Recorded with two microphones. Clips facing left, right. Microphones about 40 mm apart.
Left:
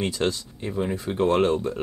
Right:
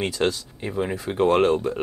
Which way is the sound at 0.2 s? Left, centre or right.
Centre.